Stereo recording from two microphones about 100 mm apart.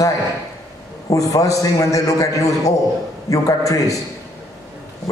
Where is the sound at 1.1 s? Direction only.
35° left (ahead or behind).